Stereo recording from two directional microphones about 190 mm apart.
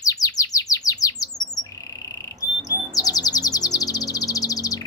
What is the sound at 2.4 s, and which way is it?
Chirp, 20° left (ahead or behind).